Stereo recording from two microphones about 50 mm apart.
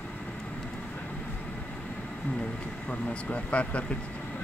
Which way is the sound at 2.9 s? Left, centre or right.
Left.